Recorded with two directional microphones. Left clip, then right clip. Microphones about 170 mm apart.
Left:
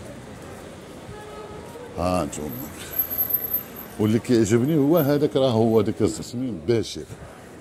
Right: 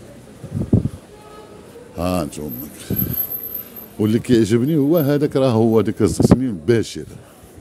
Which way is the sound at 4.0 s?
70° right (ahead or behind).